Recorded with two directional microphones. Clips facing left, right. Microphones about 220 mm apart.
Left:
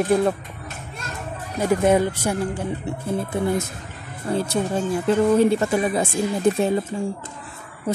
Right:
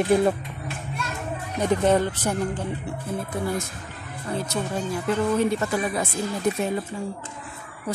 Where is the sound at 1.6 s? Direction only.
10° left (ahead or behind).